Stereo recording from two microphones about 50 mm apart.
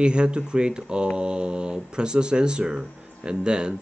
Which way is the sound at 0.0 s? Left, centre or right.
Centre.